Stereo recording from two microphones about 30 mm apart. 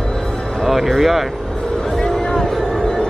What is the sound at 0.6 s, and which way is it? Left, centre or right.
Speech, centre.